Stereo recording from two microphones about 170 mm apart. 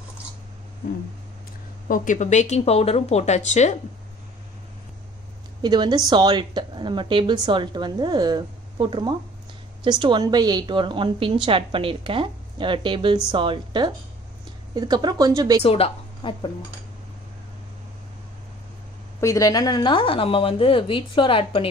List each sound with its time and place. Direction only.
1.9 s speech: 45° left (ahead or behind)
5.6 s a woman's voice: 25° right (ahead or behind)
15.6 s a woman's voice: 35° left (ahead or behind)
19.2 s speech: 20° left (ahead or behind)